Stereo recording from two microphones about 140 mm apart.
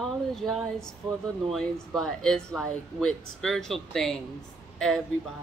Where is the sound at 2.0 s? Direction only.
5° left (ahead or behind).